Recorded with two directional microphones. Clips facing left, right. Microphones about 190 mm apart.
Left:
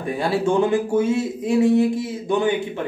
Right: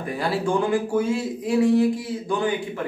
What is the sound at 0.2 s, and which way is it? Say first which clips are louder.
Speech: left 4 dB; 25° left (ahead or behind).